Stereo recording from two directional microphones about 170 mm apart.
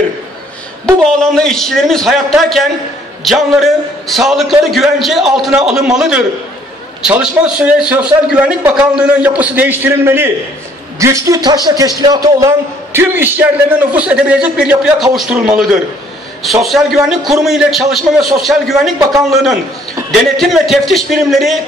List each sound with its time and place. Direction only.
1.3 s a man's voice: 5° left (ahead or behind)
20.1 s a man's voice: centre (ahead or behind)